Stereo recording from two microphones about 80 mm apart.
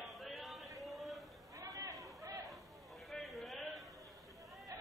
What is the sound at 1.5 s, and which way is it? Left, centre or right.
Chatter, right.